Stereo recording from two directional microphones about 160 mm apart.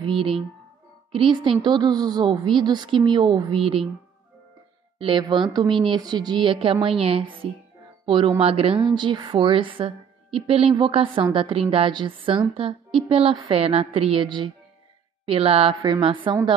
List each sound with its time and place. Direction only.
0.0 s a woman's voice: 35° right (ahead or behind)
4.9 s a woman's voice: 30° right (ahead or behind)